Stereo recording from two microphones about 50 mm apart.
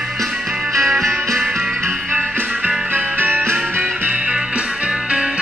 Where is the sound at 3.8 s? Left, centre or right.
Right.